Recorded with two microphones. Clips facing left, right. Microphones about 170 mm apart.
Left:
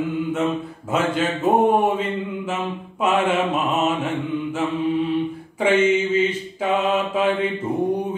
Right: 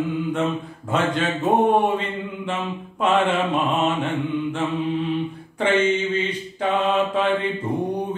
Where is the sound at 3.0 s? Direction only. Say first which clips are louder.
Even; 5° left (ahead or behind).